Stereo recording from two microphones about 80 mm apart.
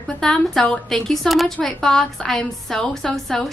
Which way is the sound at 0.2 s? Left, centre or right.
Centre.